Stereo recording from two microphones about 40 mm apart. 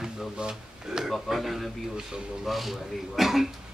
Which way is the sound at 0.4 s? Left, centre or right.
Centre.